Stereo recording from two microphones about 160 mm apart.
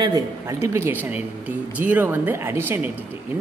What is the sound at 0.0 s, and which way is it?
A woman's voice, 20° right (ahead or behind).